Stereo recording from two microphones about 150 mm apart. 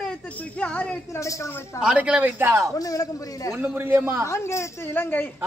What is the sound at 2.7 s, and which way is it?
Speech, 25° left (ahead or behind).